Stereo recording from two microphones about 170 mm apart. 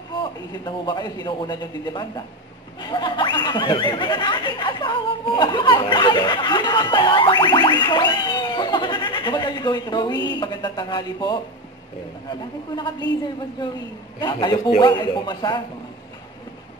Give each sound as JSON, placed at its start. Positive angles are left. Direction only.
{"t": 0.2, "sound": "speech", "side_deg": 25}